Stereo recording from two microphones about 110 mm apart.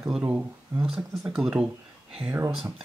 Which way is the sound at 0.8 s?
5° right (ahead or behind).